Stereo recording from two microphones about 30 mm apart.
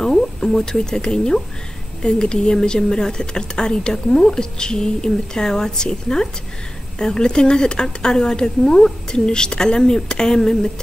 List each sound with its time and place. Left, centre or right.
0.4 s speech: left